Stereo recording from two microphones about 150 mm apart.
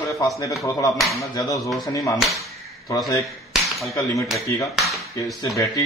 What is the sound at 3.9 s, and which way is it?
Speech, 20° left (ahead or behind).